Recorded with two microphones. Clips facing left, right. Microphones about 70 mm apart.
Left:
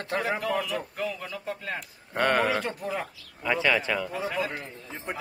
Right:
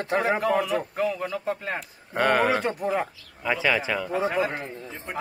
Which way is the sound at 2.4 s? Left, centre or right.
Centre.